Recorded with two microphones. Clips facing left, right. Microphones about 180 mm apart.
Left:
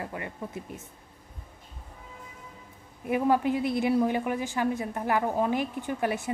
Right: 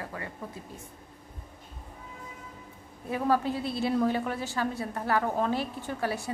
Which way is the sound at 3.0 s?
15° left (ahead or behind).